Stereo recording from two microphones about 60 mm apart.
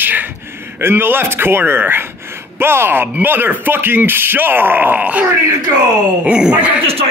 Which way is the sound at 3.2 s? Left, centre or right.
Right.